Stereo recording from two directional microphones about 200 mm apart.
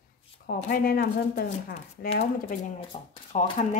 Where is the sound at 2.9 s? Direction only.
35° left (ahead or behind).